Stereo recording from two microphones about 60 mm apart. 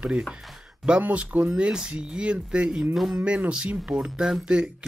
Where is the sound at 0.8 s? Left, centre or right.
Right.